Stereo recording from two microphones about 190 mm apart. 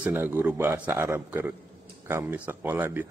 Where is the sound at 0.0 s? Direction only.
10° right (ahead or behind).